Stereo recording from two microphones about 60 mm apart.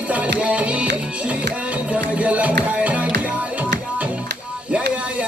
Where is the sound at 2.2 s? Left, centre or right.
Right.